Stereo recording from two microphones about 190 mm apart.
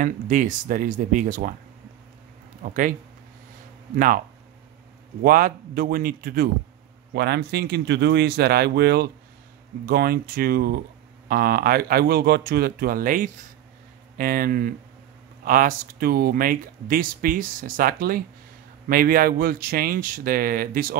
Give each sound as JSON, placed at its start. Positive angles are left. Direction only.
{"t": 0.0, "sound": "speech", "side_deg": -45}
{"t": 2.6, "sound": "speech", "side_deg": -45}
{"t": 3.9, "sound": "speech", "side_deg": -45}
{"t": 5.2, "sound": "speech", "side_deg": -50}
{"t": 7.2, "sound": "speech", "side_deg": -60}